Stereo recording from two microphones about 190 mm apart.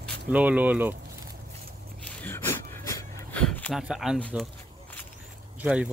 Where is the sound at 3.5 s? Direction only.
5° left (ahead or behind).